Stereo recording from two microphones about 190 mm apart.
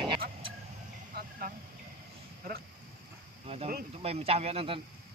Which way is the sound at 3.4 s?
30° right (ahead or behind).